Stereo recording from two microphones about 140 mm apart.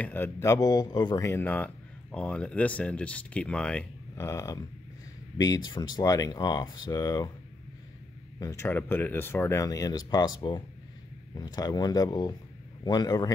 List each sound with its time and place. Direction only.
0.0 s speech: 15° left (ahead or behind)
4.1 s speech: 20° left (ahead or behind)
8.4 s speech: 20° left (ahead or behind)